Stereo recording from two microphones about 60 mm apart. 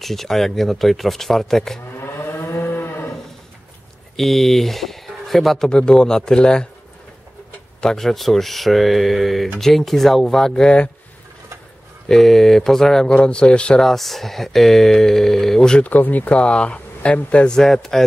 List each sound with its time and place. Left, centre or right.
0.0 s speech: centre
2.0 s moo: left
4.2 s speech: centre
5.7 s a man's voice: centre
7.8 s speech: centre
12.1 s a man's voice: centre
13.8 s speech: centre
15.8 s speech: left
17.6 s a man's voice: centre